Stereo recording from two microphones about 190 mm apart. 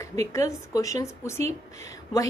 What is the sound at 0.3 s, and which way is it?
A woman's voice, 15° left (ahead or behind).